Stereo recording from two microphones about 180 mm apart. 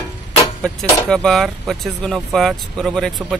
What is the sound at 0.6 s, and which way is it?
Speech, 5° left (ahead or behind).